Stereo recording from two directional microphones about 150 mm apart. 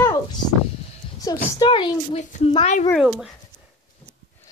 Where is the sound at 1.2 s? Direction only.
25° left (ahead or behind).